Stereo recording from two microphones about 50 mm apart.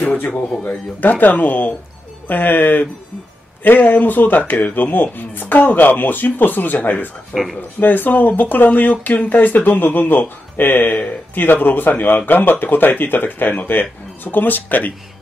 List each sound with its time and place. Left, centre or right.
1.0 s speech: left
7.3 s speech: centre
7.8 s speech: left